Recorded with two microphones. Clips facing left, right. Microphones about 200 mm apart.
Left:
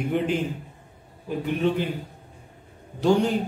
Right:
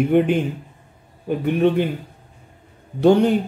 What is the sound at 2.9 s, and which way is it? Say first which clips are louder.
Speech: right 6 dB; 60° right (ahead or behind).